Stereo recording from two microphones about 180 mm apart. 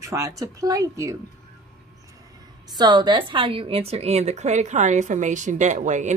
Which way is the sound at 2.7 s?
25° right (ahead or behind).